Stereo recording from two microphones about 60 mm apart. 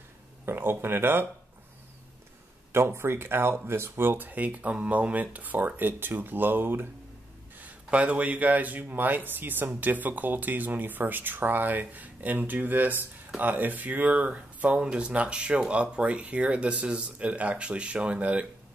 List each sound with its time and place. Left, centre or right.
0.5 s speech: right
2.7 s speech: right
7.5 s speech: right